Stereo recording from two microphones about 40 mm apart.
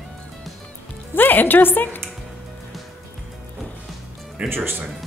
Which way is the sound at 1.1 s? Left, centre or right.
Left.